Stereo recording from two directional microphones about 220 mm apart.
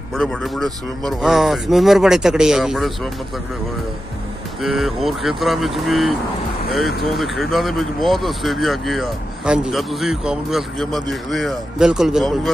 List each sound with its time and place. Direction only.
0.1 s speech: centre (ahead or behind)
4.6 s speech: centre (ahead or behind)